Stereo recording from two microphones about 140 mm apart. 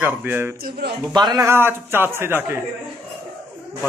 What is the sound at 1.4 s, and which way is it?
A man's voice, 15° right (ahead or behind).